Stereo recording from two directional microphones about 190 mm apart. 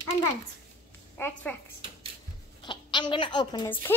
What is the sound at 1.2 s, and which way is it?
Speech, 10° left (ahead or behind).